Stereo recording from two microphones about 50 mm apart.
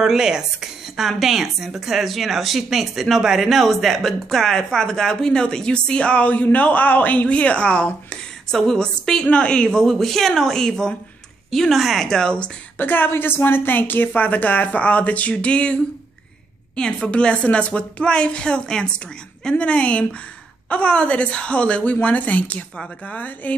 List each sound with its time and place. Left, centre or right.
0.0 s a woman's voice: centre; by 9.7 s left
9.7 s speech: centre
12.1 s speech: centre
12.7 s a woman's voice: left